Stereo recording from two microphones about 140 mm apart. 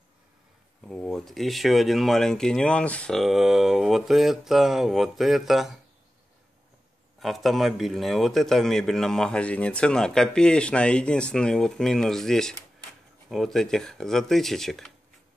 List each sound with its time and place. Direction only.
0.8 s speech: 5° left (ahead or behind)
7.2 s speech: centre (ahead or behind)